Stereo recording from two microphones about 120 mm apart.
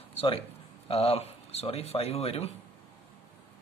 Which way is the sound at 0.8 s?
60° left (ahead or behind).